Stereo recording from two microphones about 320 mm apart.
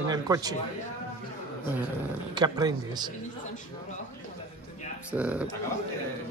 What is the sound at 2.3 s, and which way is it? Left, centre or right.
Speech, centre.